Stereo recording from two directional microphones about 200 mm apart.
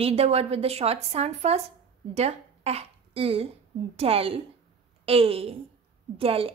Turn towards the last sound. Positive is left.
turn(degrees=-30)  # may be behind; listen again after turning